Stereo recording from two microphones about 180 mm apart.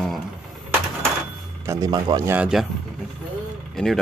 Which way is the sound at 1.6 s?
20° right (ahead or behind).